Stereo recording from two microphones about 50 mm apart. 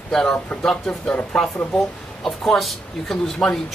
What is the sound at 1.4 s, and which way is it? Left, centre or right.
Speech, centre.